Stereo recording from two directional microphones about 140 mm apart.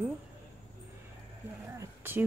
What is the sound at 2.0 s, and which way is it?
Speech, 15° right (ahead or behind).